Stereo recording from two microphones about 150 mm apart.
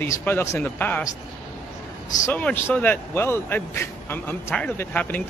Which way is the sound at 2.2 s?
10° left (ahead or behind).